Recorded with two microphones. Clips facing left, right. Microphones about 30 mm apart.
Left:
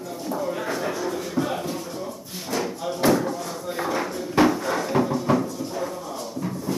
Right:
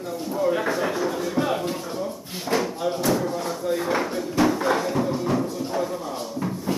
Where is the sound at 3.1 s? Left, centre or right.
Centre.